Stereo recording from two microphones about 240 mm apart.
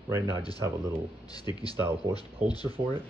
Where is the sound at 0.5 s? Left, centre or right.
Centre.